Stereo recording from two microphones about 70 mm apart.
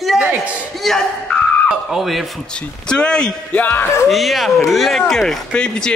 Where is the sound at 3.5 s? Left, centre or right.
Left.